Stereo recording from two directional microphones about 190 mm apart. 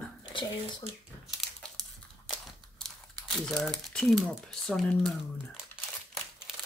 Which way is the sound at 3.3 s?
5° left (ahead or behind).